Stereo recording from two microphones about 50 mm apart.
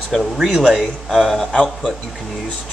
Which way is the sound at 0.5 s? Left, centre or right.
Centre.